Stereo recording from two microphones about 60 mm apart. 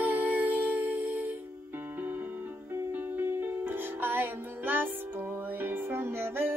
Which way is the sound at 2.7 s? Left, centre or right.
Right.